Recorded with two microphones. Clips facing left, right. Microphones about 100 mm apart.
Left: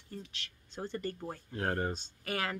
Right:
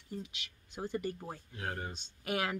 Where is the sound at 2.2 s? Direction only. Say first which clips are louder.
Right 1 dB; 15° right (ahead or behind).